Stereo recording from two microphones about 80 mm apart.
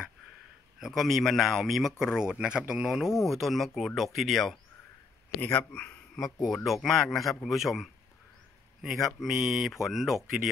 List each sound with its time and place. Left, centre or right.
0.7 s speech: centre
5.4 s speech: left
6.4 s speech: centre